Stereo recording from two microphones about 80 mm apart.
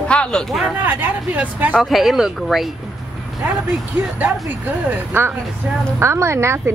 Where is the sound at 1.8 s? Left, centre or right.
Centre.